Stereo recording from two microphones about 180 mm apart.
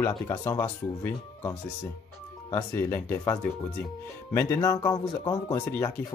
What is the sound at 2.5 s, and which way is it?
Speech, 10° left (ahead or behind).